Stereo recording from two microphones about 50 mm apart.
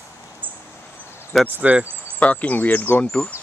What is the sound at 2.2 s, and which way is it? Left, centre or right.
Speech, left.